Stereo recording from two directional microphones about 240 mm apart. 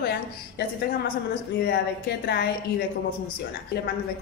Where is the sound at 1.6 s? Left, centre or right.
Left.